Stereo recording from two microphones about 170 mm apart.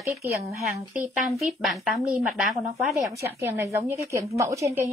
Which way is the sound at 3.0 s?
15° right (ahead or behind).